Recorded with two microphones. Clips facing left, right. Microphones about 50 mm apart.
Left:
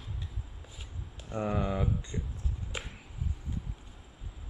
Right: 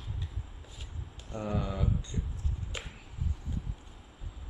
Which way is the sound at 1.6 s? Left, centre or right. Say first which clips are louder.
Left 3 dB; left.